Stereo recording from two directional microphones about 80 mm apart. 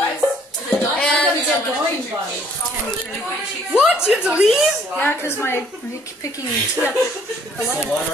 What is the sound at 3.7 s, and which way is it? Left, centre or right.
Speech, centre.